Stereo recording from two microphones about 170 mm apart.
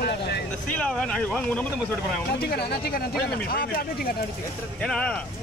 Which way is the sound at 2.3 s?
70° left (ahead or behind).